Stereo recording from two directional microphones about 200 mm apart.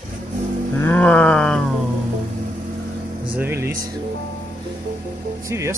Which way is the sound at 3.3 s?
10° right (ahead or behind).